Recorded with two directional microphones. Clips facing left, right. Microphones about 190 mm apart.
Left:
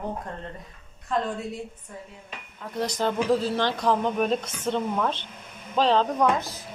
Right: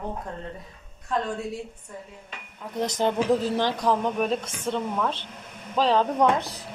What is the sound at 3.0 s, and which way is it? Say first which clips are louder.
Speech: right 1 dB; 20° right (ahead or behind).